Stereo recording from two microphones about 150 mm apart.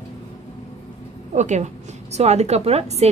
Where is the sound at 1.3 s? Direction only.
50° right (ahead or behind).